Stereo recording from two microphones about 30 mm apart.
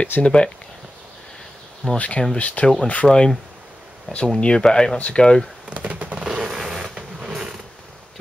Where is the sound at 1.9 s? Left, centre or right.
Left.